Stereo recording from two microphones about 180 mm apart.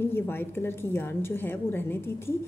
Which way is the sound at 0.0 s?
10° left (ahead or behind).